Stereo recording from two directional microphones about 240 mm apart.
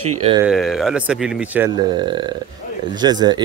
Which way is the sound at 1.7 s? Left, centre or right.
Centre.